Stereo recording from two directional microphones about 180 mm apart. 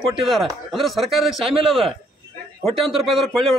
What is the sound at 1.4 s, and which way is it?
Speech, 30° right (ahead or behind).